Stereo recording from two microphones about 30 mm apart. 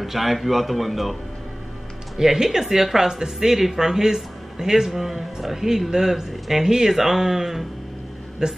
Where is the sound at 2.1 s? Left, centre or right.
Centre.